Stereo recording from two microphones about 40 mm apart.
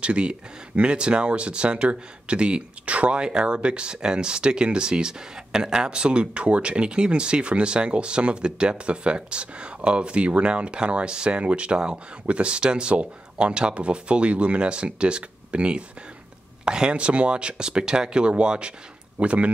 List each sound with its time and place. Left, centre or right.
0.0 s speech: right
3.2 s speech: right